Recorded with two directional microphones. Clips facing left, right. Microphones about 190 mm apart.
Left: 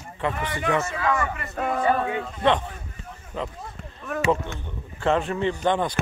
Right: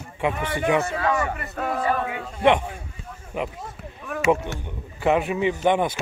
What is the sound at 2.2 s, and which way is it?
Speech, 10° right (ahead or behind).